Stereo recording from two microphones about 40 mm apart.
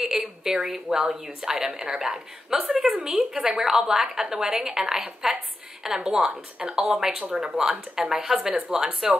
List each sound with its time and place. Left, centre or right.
0.0 s a woman's voice: centre
2.5 s a woman's voice: centre
8.5 s speech: right